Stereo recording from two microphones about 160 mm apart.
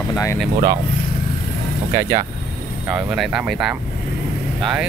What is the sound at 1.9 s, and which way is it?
Speech, 20° right (ahead or behind).